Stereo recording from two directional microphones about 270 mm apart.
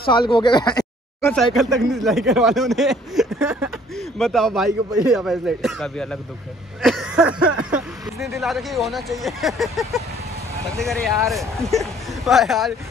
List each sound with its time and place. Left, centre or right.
0.0 s speech: centre
1.3 s speech: centre